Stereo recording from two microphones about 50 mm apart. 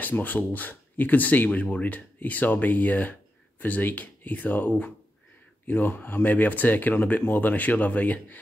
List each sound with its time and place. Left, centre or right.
0.0 s speech: left